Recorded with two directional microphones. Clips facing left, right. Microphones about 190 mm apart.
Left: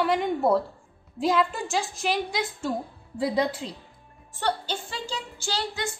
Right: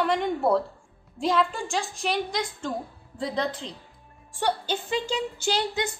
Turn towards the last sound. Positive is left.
turn(degrees=-20)  # may be behind; listen again after turning